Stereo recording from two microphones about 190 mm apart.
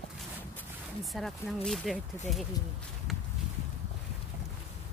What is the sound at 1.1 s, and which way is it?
Speech, centre (ahead or behind).